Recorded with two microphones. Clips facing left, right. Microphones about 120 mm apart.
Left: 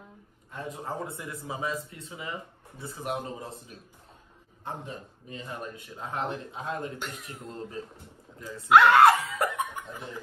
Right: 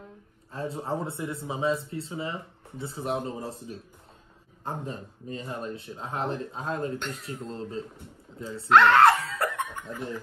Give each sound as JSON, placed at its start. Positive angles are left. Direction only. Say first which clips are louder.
{"t": 0.5, "sound": "speech", "louder": "right 5 dB", "side_deg": -30}
{"t": 8.6, "sound": "snicker", "louder": "even", "side_deg": 10}